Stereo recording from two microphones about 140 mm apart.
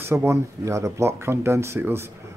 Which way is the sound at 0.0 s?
20° right (ahead or behind).